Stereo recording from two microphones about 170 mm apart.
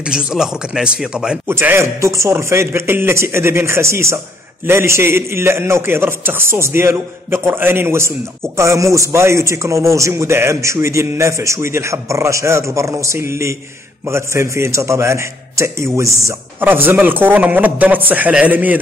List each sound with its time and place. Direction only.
0.0 s a man's voice: 5° right (ahead or behind)